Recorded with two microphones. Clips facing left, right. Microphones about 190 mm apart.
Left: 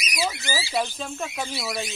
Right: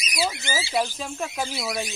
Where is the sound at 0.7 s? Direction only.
5° right (ahead or behind).